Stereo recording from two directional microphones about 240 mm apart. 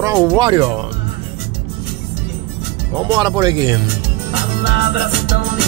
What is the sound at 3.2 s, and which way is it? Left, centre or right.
Speech, centre.